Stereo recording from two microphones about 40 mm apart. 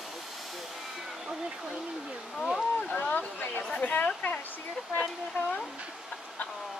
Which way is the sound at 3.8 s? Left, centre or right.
Left.